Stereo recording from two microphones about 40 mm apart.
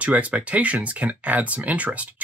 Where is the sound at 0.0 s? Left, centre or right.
Right.